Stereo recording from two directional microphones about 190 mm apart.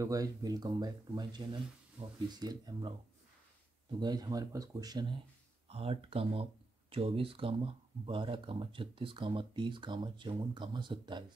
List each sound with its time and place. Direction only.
0.0 s speech: 20° right (ahead or behind)
4.0 s speech: 20° right (ahead or behind)
5.7 s speech: 30° right (ahead or behind)